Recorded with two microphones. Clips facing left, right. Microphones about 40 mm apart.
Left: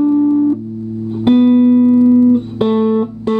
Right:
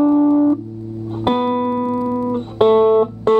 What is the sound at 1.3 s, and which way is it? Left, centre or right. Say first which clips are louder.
Music: left 8 dB; centre.